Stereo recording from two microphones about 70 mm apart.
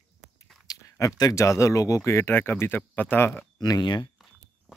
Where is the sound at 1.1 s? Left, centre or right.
Left.